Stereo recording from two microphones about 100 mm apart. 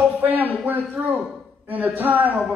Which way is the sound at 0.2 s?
20° right (ahead or behind).